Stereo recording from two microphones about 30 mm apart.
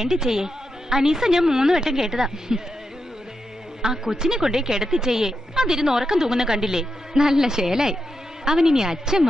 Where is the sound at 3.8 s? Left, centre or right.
Centre.